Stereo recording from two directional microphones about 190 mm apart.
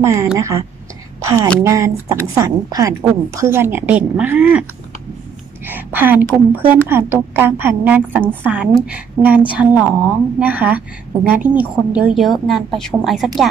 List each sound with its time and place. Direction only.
0.0 s a woman's voice: 15° right (ahead or behind)
5.7 s a woman's voice: 10° right (ahead or behind)